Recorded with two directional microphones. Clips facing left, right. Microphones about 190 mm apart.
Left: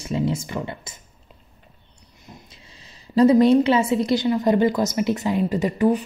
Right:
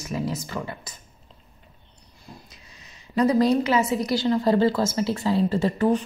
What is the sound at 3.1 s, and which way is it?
A woman's voice, 25° left (ahead or behind).